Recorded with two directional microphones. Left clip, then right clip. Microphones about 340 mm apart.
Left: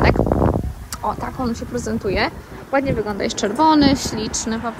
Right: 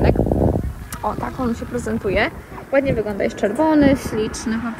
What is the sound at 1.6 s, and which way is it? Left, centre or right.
A woman's voice, centre.